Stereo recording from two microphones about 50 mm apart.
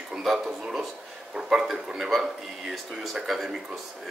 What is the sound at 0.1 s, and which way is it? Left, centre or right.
Speech, centre.